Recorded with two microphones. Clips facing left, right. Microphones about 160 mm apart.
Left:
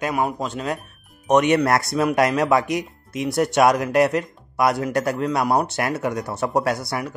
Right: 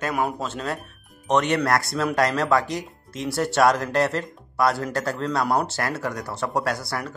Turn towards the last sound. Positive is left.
turn(degrees=20)  # may be behind; listen again after turning